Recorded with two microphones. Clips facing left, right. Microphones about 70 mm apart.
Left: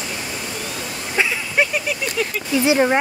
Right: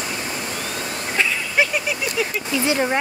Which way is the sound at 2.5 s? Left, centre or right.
Left.